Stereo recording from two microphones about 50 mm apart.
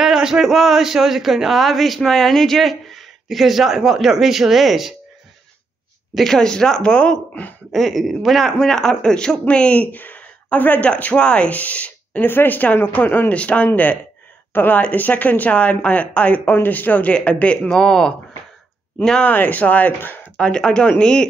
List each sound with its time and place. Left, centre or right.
0.0 s speech: centre
6.1 s speech: centre
7.7 s speech: centre; by 9.8 s left
9.8 s speech: left
13.3 s speech: left
17.1 s speech: left
17.6 s speech: centre
19.2 s speech: left
20.3 s speech: centre